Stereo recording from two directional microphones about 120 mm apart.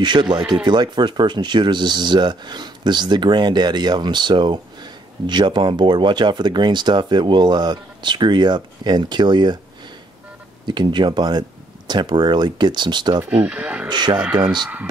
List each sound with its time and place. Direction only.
0.0 s speech: 40° right (ahead or behind)
10.6 s speech: 40° right (ahead or behind)
13.3 s speech: 10° right (ahead or behind)
13.8 s speech: 40° right (ahead or behind)